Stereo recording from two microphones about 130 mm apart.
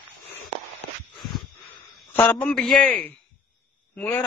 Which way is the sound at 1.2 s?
Centre (ahead or behind).